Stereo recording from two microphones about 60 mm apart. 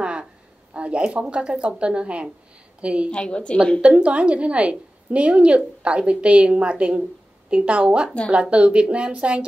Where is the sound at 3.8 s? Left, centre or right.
Right.